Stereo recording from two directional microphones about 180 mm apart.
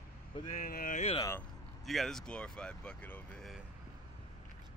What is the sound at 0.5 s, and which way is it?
Speech, 50° left (ahead or behind).